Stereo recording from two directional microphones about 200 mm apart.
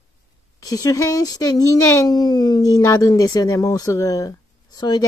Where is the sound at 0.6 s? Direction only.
15° left (ahead or behind).